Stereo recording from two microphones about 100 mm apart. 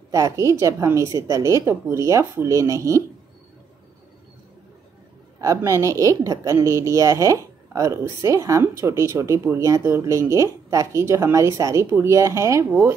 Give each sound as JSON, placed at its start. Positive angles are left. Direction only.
{"t": 0.1, "sound": "a woman's voice", "side_deg": -30}
{"t": 5.4, "sound": "a woman's voice", "side_deg": -30}